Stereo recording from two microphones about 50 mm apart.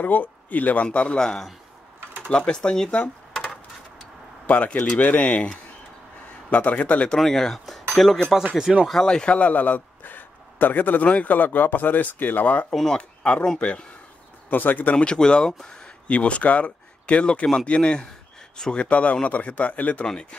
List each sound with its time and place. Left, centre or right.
0.0 s speech: left
0.8 s speech: centre
4.6 s speech: left
7.2 s speech: centre
8.5 s speech: centre
9.0 s a man's voice: centre
14.5 s a man's voice: left
15.0 s speech: centre
16.1 s speech: left
20.1 s speech: left